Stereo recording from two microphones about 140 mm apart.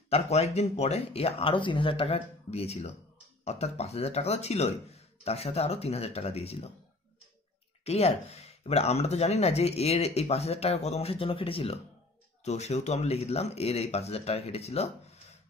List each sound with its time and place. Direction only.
0.1 s speech: 50° left (ahead or behind)
7.8 s speech: 50° left (ahead or behind)